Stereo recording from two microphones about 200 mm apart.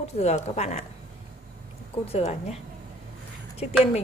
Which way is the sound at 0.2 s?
35° left (ahead or behind).